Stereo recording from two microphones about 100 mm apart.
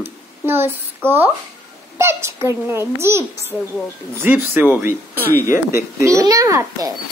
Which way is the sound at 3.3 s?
25° left (ahead or behind).